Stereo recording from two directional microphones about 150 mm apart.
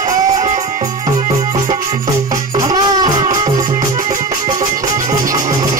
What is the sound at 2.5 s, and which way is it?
Music, 25° right (ahead or behind).